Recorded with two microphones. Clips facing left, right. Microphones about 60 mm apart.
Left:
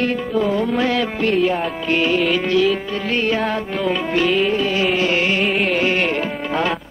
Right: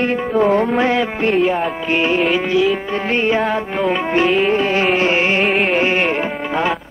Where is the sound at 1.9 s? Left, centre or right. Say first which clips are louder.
Even; right.